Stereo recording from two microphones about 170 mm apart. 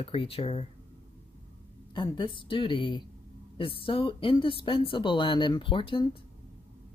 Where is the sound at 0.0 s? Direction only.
30° left (ahead or behind).